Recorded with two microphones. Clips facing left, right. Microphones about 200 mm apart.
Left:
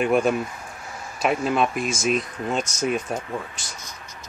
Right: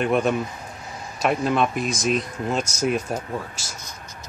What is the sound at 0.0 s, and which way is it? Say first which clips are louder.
Speech: left 1 dB; centre (ahead or behind).